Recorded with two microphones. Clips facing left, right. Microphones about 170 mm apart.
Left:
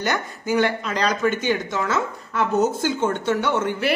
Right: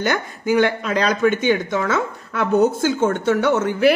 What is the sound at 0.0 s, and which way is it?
Speech, 55° right (ahead or behind).